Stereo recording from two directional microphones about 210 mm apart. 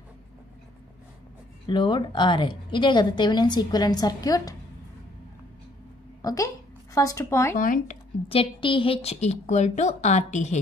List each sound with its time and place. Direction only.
1.7 s a woman's voice: 20° left (ahead or behind)
6.2 s a woman's voice: 15° left (ahead or behind)
7.5 s a woman's voice: 40° left (ahead or behind)
8.3 s a woman's voice: 25° left (ahead or behind)